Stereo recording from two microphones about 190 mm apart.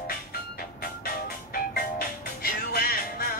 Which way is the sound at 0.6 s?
50° left (ahead or behind).